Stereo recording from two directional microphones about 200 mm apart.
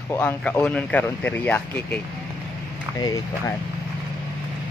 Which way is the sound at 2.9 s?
20° left (ahead or behind).